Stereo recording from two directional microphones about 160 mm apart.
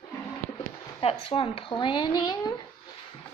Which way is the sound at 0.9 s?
35° left (ahead or behind).